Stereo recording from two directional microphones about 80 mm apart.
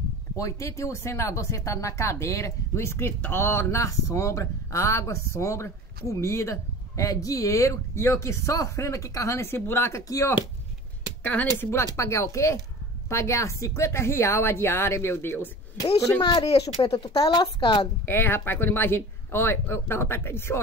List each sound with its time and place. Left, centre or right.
0.4 s speech: left
11.2 s speech: left
11.7 s speech: left
15.8 s speech: left
16.3 s speech: left
17.3 s a woman's voice: left
18.0 s speech: left